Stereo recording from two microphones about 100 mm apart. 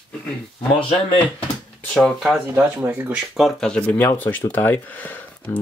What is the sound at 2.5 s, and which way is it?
Speech, 20° right (ahead or behind).